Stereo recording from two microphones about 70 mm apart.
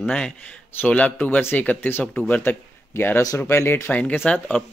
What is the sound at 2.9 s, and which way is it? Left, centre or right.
Speech, left.